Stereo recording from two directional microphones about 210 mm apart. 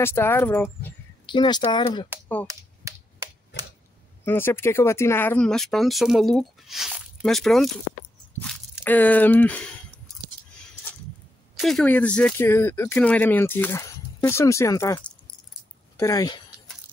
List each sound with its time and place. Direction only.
0.0 s speech: 10° left (ahead or behind)
1.2 s speech: 20° left (ahead or behind)
4.2 s speech: 10° left (ahead or behind)
11.5 s speech: centre (ahead or behind); by 16.5 s 20° left (ahead or behind)